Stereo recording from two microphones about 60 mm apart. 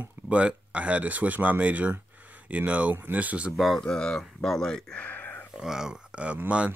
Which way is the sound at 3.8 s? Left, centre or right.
Centre.